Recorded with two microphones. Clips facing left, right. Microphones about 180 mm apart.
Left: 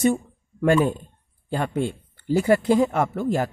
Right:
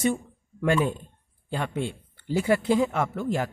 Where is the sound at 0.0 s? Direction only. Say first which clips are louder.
Left 5 dB; 45° left (ahead or behind).